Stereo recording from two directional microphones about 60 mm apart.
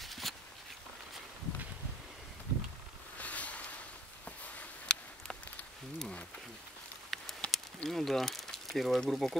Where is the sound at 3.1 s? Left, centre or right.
Left.